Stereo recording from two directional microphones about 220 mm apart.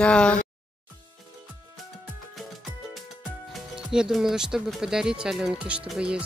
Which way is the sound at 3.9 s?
5° right (ahead or behind).